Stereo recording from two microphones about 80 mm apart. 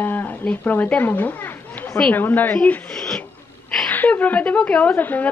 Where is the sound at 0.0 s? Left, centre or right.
Left.